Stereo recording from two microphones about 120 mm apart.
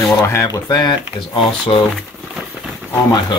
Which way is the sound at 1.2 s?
45° left (ahead or behind).